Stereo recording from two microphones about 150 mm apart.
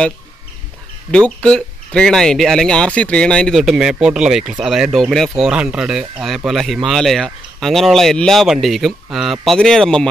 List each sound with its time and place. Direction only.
1.1 s speech: 5° left (ahead or behind)